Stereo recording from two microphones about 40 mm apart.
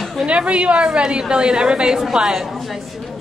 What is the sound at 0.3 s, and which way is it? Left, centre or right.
Speech, right.